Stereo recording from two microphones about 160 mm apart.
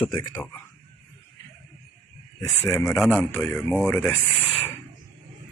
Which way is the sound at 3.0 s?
Centre (ahead or behind).